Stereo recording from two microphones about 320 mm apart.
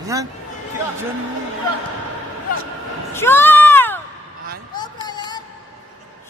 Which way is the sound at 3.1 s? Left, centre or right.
Centre.